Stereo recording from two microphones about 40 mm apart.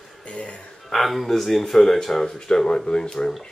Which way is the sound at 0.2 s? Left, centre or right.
Left.